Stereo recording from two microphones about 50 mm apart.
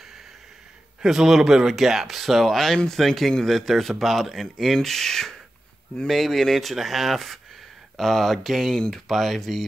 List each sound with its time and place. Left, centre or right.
1.0 s speech: centre